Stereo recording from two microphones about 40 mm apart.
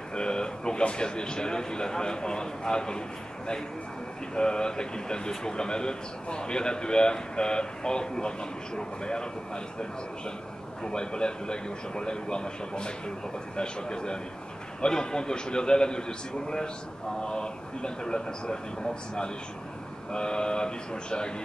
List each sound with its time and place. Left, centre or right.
0.1 s a man's voice: left
4.4 s a man's voice: left
10.8 s a man's voice: left
20.1 s a man's voice: left